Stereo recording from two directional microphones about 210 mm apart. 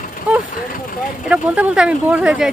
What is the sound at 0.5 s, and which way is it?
Speech, 40° left (ahead or behind).